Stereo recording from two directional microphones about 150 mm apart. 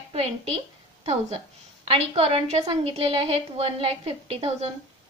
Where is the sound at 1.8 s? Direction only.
40° right (ahead or behind).